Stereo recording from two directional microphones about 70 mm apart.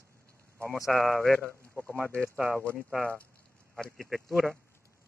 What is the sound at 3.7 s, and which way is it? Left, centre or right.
Speech, centre.